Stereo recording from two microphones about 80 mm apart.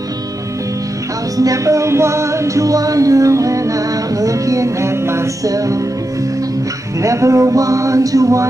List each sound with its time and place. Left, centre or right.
1.3 s music: right
7.0 s music: right